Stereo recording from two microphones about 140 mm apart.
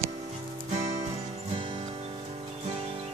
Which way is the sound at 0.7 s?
50° right (ahead or behind).